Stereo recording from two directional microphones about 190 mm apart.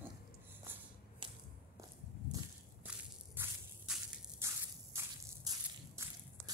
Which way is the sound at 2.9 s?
5° right (ahead or behind).